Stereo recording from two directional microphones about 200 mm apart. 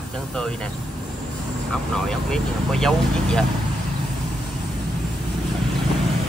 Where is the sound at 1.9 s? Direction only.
5° left (ahead or behind).